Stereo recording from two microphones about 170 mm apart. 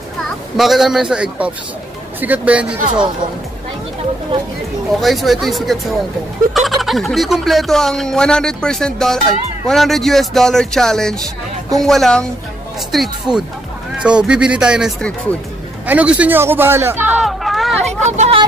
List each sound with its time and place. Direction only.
0.6 s speech: centre (ahead or behind)
5.0 s speech: centre (ahead or behind)
15.9 s speech: 10° right (ahead or behind)
18.0 s speech: 40° right (ahead or behind)